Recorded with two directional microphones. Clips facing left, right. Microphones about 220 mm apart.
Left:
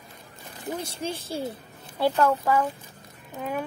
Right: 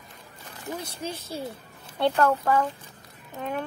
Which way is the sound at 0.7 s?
25° left (ahead or behind).